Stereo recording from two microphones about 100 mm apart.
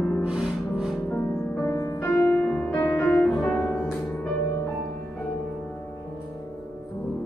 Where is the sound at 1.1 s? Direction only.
25° left (ahead or behind).